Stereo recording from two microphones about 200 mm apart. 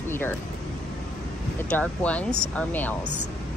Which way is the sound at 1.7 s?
5° left (ahead or behind).